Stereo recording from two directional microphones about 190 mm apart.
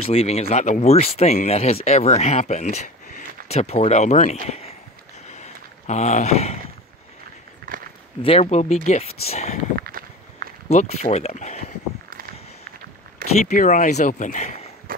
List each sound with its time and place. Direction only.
0.0 s speech: 30° left (ahead or behind)
4.5 s a sound: 35° left (ahead or behind)
7.6 s walk: 55° right (ahead or behind)
8.2 s speech: 30° left (ahead or behind)
9.8 s walk: 50° right (ahead or behind)
10.7 s speech: 35° left (ahead or behind)
13.5 s speech: 40° left (ahead or behind)
14.9 s a sound: 50° right (ahead or behind)